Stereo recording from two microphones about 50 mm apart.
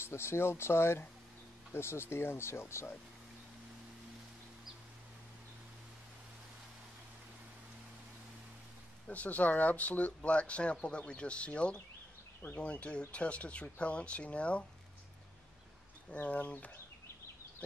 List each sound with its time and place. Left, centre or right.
0.0 s speech: left
9.1 s speech: left
16.1 s speech: left